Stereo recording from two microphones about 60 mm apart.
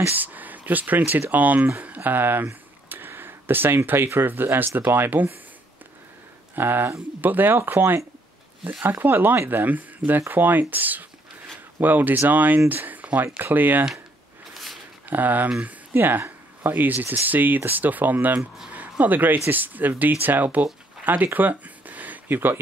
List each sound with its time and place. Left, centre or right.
0.1 s speech: right
6.5 s speech: right
15.0 s speech: right
21.0 s a sound: right